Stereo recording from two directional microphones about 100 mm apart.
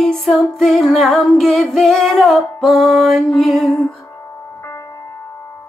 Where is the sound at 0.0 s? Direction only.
Centre (ahead or behind).